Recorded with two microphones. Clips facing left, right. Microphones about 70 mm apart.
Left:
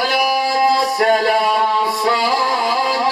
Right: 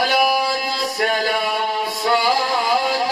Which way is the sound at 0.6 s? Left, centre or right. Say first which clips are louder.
Left 9 dB; left.